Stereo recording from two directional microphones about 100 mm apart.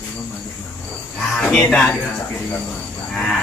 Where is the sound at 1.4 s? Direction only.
5° left (ahead or behind).